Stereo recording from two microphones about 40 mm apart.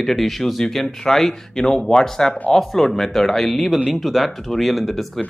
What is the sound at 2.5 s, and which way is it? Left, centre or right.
Speech, centre.